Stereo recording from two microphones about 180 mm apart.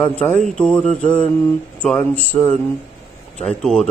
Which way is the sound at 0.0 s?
10° left (ahead or behind).